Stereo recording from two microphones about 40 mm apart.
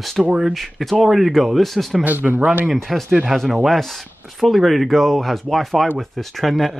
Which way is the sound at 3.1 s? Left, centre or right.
Right.